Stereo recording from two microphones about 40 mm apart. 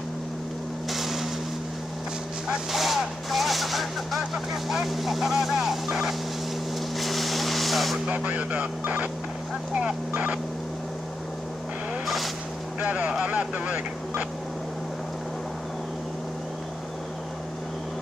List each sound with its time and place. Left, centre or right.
0.8 s vehicle: centre
2.7 s vehicle: centre
4.7 s speech: centre
7.0 s vehicle: centre
8.1 s speech: right
12.8 s speech: right